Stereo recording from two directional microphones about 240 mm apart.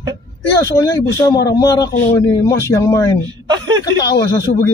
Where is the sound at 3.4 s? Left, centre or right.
Centre.